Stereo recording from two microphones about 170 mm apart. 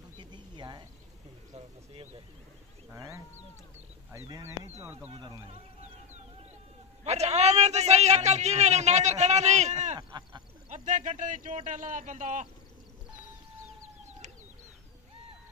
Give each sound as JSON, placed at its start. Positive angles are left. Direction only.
{"t": 0.2, "sound": "a sound", "side_deg": -25}
{"t": 2.9, "sound": "speech", "side_deg": -15}
{"t": 4.3, "sound": "speech", "side_deg": -15}
{"t": 5.5, "sound": "music", "side_deg": -40}
{"t": 7.1, "sound": "a man's voice", "side_deg": -40}
{"t": 9.9, "sound": "a sound", "side_deg": -25}
{"t": 10.7, "sound": "speech", "side_deg": -45}